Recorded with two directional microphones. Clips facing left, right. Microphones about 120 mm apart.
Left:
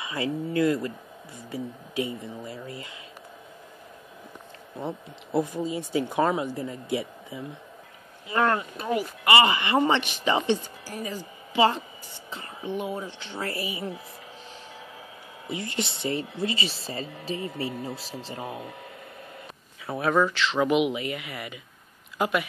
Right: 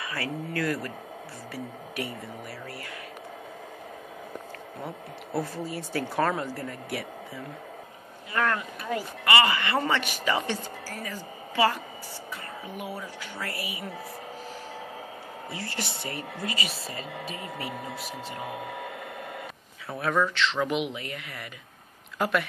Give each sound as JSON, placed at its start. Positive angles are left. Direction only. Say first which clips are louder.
{"t": 0.0, "sound": "speech", "louder": "left 4 dB", "side_deg": 20}
{"t": 4.8, "sound": "speech", "louder": "left 5 dB", "side_deg": 20}
{"t": 15.5, "sound": "speech", "louder": "left 5 dB", "side_deg": 20}
{"t": 18.5, "sound": "a sound", "louder": "right 2 dB", "side_deg": -90}
{"t": 19.9, "sound": "speech", "louder": "left 3 dB", "side_deg": 5}